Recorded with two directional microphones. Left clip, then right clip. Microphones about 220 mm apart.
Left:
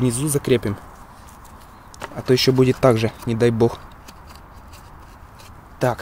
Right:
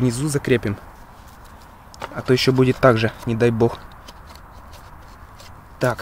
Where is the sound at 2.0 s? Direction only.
5° right (ahead or behind).